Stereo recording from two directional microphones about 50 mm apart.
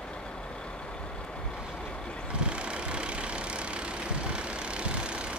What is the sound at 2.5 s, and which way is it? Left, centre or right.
Vehicle, right.